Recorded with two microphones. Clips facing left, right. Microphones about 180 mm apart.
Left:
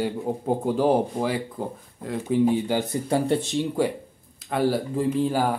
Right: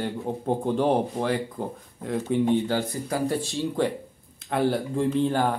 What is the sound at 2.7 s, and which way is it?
Speech, 25° left (ahead or behind).